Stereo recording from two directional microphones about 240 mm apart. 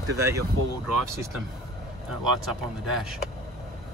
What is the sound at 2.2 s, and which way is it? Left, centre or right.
Speech, centre.